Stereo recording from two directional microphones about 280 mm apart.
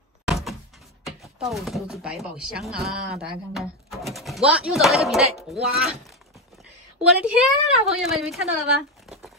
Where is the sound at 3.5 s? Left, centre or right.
Centre.